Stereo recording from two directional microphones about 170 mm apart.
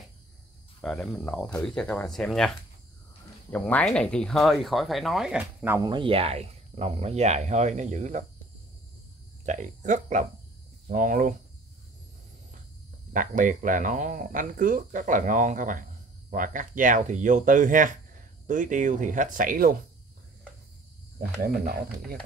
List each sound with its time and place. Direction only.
0.8 s speech: 5° left (ahead or behind)
5.8 s speech: 30° right (ahead or behind); by 8.2 s 45° right (ahead or behind)
9.5 s speech: 45° right (ahead or behind)
13.1 s speech: 50° right (ahead or behind)
21.2 s speech: 55° right (ahead or behind)